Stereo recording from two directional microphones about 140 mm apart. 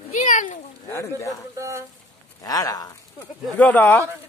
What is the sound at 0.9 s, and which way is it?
Speech, 20° left (ahead or behind).